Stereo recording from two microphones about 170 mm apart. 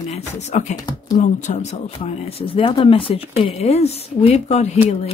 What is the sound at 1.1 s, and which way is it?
Speech, 45° left (ahead or behind).